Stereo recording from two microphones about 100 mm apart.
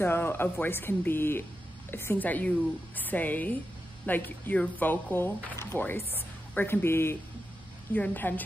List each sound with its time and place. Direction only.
0.0 s a woman's voice: 20° left (ahead or behind)